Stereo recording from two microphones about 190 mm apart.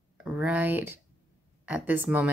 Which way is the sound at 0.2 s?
10° right (ahead or behind).